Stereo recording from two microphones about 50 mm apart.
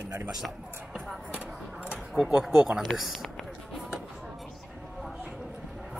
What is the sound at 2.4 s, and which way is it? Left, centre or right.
Speech, centre.